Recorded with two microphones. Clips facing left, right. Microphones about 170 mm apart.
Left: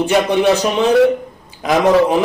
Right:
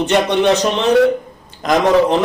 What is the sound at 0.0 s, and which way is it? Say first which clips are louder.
A man's voice: left 1 dB; 5° left (ahead or behind).